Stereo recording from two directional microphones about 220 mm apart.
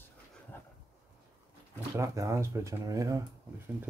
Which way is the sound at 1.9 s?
15° right (ahead or behind).